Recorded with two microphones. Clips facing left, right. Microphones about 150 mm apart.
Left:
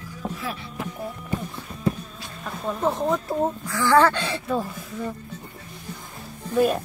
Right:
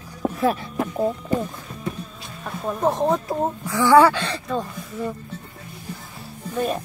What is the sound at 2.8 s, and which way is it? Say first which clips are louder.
Speech: right 3 dB; 15° right (ahead or behind).